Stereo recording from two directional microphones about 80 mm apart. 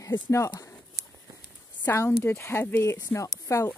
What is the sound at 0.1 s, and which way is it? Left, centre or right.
Speech, left.